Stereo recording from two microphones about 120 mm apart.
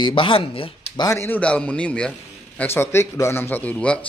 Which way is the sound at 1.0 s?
30° left (ahead or behind).